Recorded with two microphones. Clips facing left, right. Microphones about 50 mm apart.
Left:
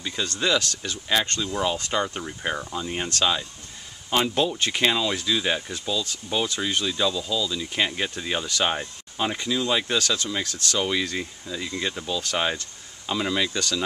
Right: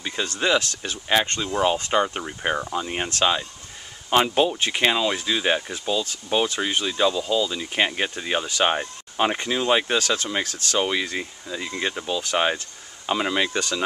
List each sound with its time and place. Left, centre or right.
0.0 s speech: right
9.1 s speech: right